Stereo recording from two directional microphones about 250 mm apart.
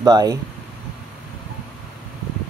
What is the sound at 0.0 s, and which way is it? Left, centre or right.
Speech, centre.